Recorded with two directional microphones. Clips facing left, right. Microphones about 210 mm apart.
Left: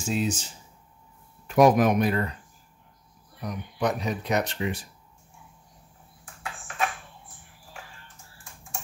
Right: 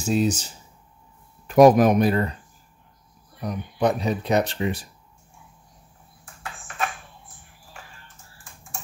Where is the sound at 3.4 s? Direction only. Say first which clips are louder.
Right 5 dB; 30° right (ahead or behind).